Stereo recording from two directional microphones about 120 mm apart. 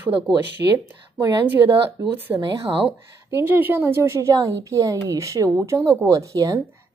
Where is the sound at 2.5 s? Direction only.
50° right (ahead or behind).